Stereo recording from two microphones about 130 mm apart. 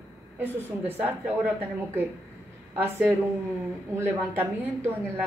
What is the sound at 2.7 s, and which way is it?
A woman's voice, 15° right (ahead or behind).